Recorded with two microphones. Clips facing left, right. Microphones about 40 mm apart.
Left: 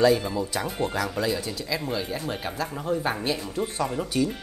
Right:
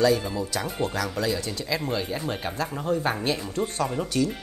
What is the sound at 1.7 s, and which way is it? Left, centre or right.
Speech, centre.